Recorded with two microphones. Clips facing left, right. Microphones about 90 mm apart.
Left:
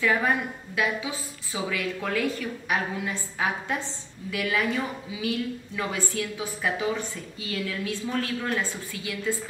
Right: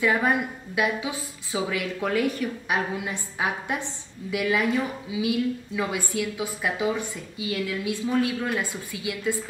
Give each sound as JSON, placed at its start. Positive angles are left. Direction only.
{"t": 0.0, "sound": "a woman's voice", "side_deg": -15}